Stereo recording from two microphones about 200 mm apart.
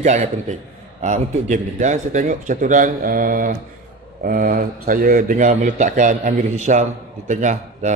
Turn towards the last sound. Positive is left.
turn(degrees=-35)  # may be behind; listen again after turning